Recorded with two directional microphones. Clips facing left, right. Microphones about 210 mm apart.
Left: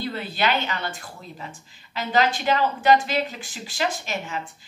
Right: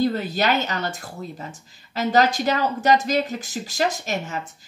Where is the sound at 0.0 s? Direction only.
45° right (ahead or behind).